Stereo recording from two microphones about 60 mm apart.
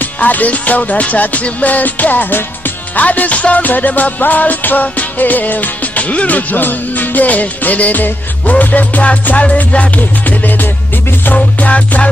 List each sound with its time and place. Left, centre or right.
0.0 s music: left